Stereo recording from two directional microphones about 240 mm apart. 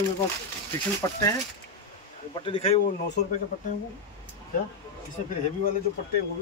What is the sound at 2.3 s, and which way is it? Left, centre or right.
Speech, left.